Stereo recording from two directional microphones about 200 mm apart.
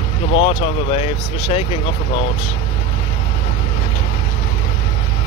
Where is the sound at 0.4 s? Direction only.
30° left (ahead or behind).